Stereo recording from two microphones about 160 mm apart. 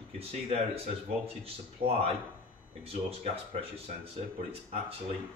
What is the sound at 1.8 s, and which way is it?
Speech, 40° right (ahead or behind).